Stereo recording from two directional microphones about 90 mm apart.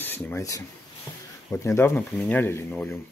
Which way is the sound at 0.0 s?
20° left (ahead or behind).